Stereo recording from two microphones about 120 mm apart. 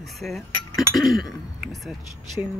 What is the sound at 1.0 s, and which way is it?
Speech, centre (ahead or behind).